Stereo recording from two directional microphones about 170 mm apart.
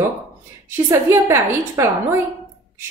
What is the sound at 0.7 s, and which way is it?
A woman's voice, 15° right (ahead or behind).